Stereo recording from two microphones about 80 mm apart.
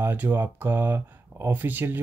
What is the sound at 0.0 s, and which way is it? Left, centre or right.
Speech, right.